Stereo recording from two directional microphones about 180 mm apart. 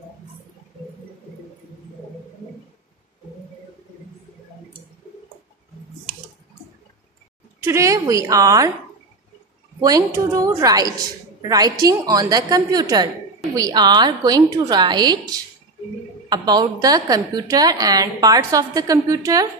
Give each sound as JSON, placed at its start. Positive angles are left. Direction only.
{"t": 7.6, "sound": "a woman's voice", "side_deg": -15}
{"t": 9.8, "sound": "a woman's voice", "side_deg": -20}